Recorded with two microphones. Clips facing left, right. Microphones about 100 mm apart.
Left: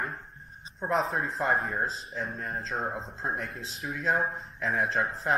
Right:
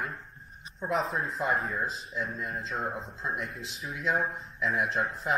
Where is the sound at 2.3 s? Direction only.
40° left (ahead or behind).